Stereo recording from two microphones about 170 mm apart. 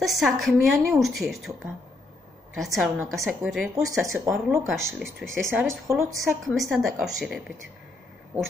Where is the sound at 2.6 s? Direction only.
Centre (ahead or behind).